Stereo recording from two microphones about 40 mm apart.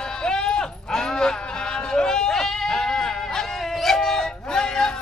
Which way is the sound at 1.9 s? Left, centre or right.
Centre.